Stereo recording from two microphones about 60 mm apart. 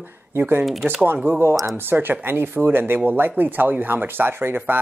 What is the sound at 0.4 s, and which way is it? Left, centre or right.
Speech, right.